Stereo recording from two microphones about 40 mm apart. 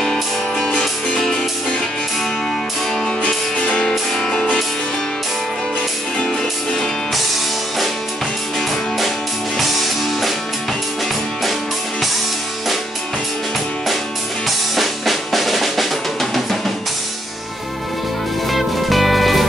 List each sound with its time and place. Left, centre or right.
0.0 s music: centre
0.7 s music: centre
4.1 s music: left
8.5 s music: centre
14.8 s drum: centre
18.5 s music: centre